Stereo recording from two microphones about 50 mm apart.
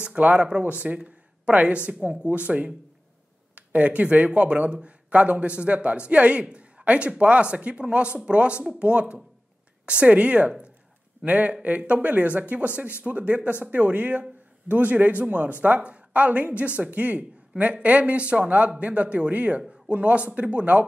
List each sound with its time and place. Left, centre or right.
0.0 s speech: right